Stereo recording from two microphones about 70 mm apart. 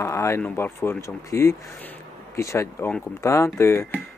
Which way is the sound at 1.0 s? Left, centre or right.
Left.